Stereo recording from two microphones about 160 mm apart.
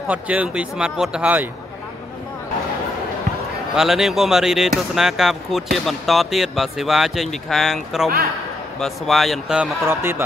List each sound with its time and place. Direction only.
0.1 s speech: 10° right (ahead or behind)
3.7 s speech: centre (ahead or behind)